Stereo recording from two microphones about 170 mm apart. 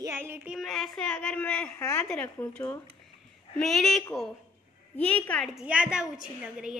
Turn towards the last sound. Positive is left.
turn(degrees=-5)  # may be behind; listen again after turning